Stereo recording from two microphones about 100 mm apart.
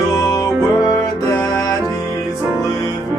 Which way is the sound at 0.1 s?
40° left (ahead or behind).